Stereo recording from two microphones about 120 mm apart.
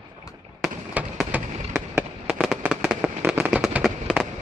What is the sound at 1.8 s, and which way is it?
Fireworks, 10° right (ahead or behind).